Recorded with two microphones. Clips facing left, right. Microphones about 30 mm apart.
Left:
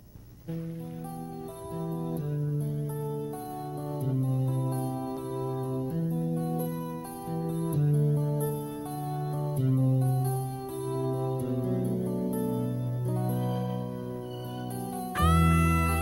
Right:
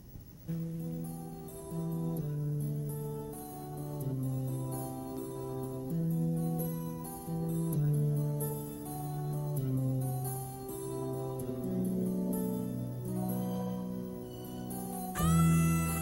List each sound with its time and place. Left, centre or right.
1.8 s music: left
4.0 s music: left
15.1 s music: left